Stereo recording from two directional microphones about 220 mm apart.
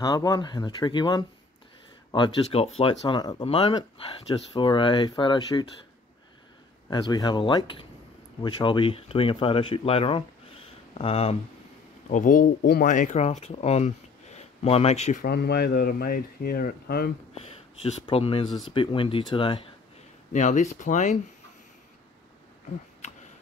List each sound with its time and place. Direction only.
0.0 s speech: 15° left (ahead or behind)
6.9 s speech: 20° left (ahead or behind); by 17.1 s 45° left (ahead or behind)
17.5 s speech: 25° left (ahead or behind)